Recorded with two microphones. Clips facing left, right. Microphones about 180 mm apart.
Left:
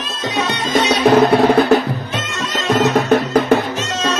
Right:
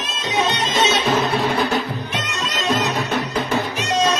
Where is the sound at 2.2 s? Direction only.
20° right (ahead or behind).